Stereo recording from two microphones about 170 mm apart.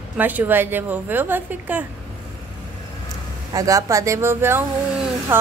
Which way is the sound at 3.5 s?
20° right (ahead or behind).